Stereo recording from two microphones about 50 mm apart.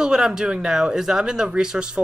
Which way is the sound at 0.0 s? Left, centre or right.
Centre.